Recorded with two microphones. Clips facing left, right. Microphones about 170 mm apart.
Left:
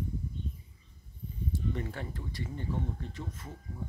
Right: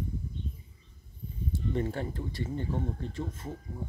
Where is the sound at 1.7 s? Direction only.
30° right (ahead or behind).